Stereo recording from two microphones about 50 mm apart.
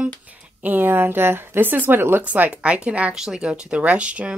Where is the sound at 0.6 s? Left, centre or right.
Right.